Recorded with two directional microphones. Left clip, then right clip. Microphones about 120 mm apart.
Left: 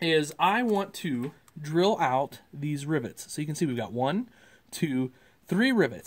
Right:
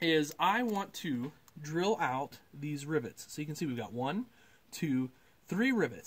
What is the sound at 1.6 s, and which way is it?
Speech, 35° left (ahead or behind).